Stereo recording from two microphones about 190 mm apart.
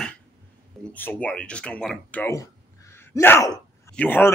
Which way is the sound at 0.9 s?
10° left (ahead or behind).